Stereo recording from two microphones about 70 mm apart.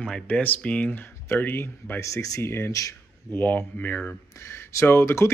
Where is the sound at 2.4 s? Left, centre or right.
Left.